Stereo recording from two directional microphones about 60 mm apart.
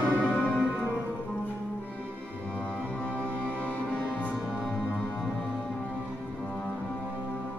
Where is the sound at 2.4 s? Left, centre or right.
Centre.